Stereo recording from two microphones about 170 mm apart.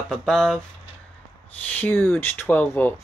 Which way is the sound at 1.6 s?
10° left (ahead or behind).